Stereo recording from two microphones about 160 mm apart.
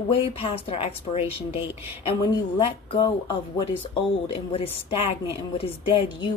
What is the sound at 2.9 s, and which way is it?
Speech, 30° left (ahead or behind).